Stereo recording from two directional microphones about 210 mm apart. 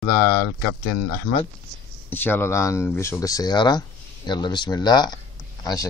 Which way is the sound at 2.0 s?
10° left (ahead or behind).